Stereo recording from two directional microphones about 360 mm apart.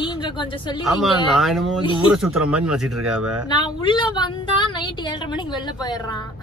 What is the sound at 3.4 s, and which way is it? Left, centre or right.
A woman's voice, centre.